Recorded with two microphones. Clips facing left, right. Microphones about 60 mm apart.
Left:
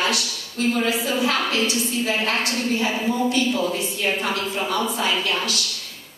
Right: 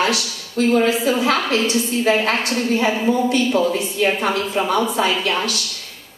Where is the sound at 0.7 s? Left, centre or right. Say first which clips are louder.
Right 6 dB; right.